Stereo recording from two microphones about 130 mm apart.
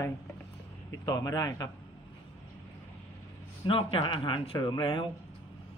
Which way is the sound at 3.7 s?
45° left (ahead or behind).